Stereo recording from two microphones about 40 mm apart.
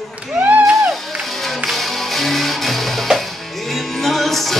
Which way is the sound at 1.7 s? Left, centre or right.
Centre.